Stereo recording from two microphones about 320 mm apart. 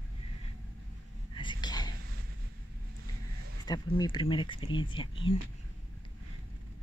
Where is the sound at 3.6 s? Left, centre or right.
Centre.